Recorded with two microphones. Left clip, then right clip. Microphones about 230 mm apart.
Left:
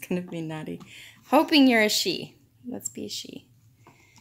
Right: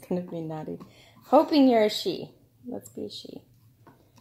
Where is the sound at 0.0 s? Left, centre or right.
Left.